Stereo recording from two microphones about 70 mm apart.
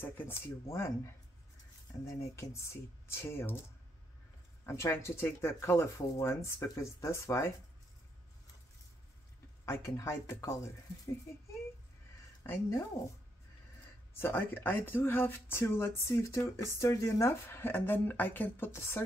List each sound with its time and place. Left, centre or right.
0.0 s speech: left
4.6 s speech: left
9.7 s speech: left
13.0 s speech: left
14.1 s speech: left